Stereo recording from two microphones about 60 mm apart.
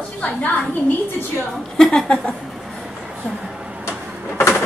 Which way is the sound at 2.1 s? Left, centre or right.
Centre.